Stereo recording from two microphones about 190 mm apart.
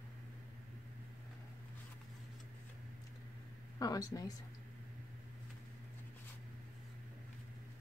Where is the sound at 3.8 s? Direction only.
20° left (ahead or behind).